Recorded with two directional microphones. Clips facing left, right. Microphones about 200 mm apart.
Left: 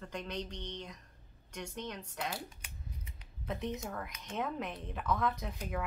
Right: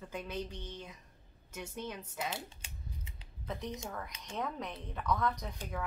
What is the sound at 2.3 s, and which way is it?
Scissors, 25° right (ahead or behind).